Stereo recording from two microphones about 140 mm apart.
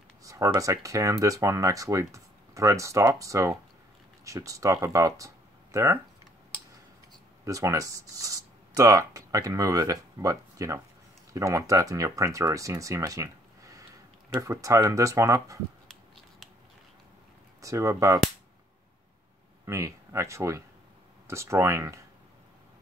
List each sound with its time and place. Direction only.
0.2 s speech: 25° right (ahead or behind)
7.4 s speech: 25° right (ahead or behind)
17.6 s speech: 25° right (ahead or behind)
19.6 s speech: 20° right (ahead or behind)